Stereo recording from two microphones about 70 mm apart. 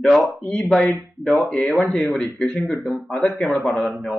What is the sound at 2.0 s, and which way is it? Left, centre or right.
Speech, centre.